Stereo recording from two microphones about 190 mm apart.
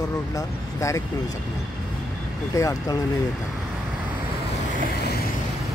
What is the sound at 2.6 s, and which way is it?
Speech, 20° left (ahead or behind).